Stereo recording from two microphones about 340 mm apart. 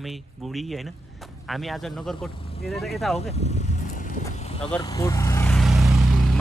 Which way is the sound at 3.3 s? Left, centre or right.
Centre.